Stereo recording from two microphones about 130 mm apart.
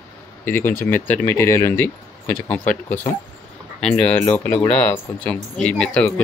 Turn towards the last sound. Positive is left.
turn(degrees=10)  # may be behind; listen again after turning